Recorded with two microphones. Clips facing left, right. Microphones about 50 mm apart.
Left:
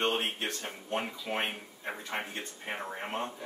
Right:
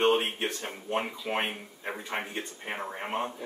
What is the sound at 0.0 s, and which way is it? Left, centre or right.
Speech, centre.